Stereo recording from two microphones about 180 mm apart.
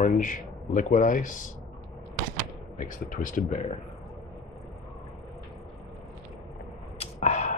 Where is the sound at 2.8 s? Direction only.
45° left (ahead or behind).